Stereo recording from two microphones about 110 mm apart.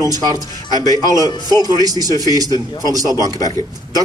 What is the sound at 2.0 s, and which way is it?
Speech, 35° right (ahead or behind).